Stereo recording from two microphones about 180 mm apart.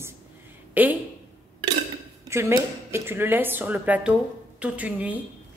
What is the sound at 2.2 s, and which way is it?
A woman's voice, 15° right (ahead or behind).